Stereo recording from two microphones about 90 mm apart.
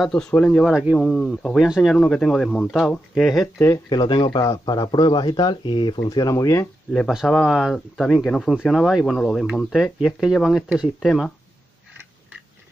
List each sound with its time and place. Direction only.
0.0 s speech: 10° left (ahead or behind)
0.7 s speech: 10° right (ahead or behind)
0.9 s speech: 5° left (ahead or behind)
2.0 s speech: 10° left (ahead or behind)
3.9 s speech: 55° left (ahead or behind)
4.5 s speech: 50° left (ahead or behind)
6.0 s speech: 45° left (ahead or behind)
6.3 s speech: 35° left (ahead or behind)
7.2 s speech: 5° left (ahead or behind)